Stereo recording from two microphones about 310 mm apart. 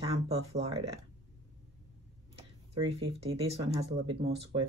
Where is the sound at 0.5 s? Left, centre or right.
Centre.